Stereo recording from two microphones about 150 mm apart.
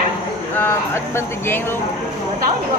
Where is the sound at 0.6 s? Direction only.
15° left (ahead or behind).